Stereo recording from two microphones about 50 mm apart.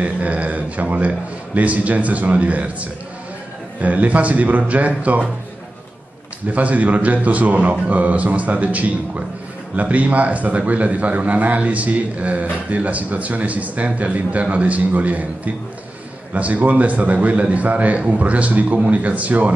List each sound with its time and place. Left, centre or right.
0.0 s a man's voice: right
6.5 s a man's voice: right